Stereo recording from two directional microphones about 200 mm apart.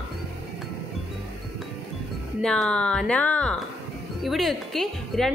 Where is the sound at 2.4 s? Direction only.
5° left (ahead or behind).